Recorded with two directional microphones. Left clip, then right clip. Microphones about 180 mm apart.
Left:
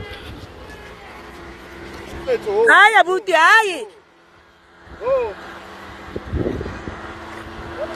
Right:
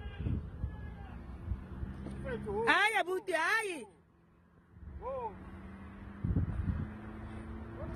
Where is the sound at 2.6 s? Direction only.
25° right (ahead or behind).